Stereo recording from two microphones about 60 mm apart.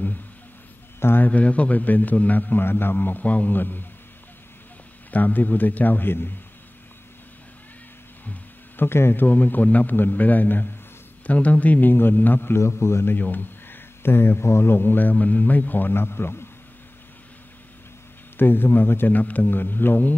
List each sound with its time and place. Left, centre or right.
0.9 s a man's voice: left
1.2 s a man's voice: left
5.1 s a man's voice: left
8.3 s a man's voice: left
12.5 s a man's voice: left
13.2 s a man's voice: left
18.4 s a man's voice: left